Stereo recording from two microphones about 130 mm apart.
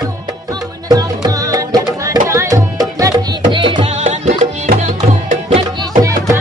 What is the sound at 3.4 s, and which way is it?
Music, 40° right (ahead or behind).